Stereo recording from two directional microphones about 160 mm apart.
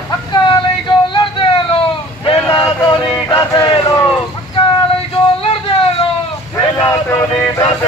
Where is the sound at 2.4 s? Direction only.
25° left (ahead or behind).